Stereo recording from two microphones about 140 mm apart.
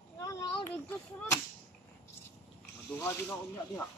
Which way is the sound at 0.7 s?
15° left (ahead or behind).